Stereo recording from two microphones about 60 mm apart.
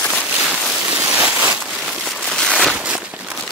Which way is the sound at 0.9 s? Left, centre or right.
Centre.